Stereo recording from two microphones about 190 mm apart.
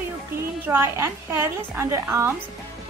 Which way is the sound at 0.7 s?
15° right (ahead or behind).